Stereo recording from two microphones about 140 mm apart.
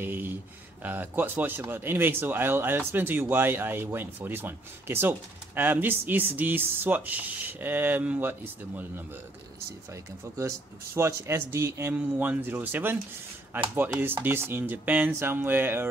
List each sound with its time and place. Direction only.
0.0 s a sound: 15° right (ahead or behind)
0.8 s speech: 15° right (ahead or behind)
11.0 s speech: 20° right (ahead or behind)